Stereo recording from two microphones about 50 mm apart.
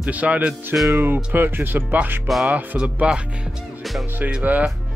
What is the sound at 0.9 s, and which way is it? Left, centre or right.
Speech, right.